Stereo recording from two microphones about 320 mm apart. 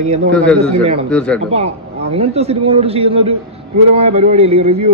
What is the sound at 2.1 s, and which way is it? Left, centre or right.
A man's voice, centre.